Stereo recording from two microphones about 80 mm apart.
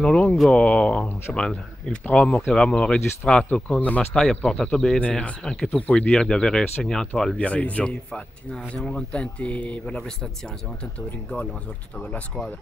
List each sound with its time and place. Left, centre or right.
0.0 s speech: centre